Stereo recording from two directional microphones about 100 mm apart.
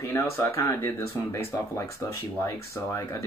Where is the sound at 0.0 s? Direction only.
30° left (ahead or behind).